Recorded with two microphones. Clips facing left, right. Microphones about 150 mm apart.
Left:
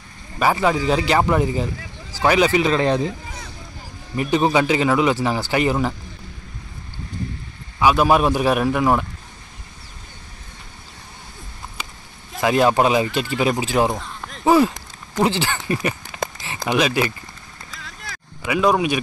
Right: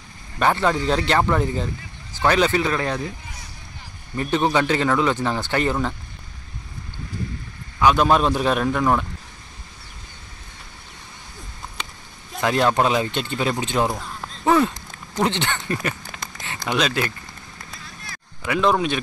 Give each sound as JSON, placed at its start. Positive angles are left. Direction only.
{"t": 0.4, "sound": "speech", "side_deg": 5}
{"t": 4.2, "sound": "speech", "side_deg": 10}
{"t": 7.8, "sound": "speech", "side_deg": 10}
{"t": 11.7, "sound": "a sound", "side_deg": 5}
{"t": 13.4, "sound": "speech", "side_deg": 10}
{"t": 17.6, "sound": "vehicle", "side_deg": 90}
{"t": 18.4, "sound": "speech", "side_deg": 10}